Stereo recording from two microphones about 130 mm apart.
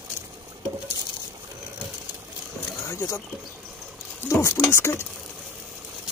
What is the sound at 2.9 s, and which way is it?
Speech, 25° left (ahead or behind).